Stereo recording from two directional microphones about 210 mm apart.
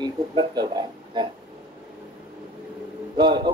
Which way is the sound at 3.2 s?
20° right (ahead or behind).